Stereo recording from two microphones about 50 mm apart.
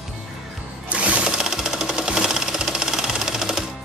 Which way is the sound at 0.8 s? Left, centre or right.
Right.